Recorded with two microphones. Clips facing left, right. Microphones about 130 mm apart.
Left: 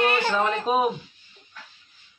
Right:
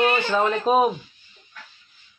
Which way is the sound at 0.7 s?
40° right (ahead or behind).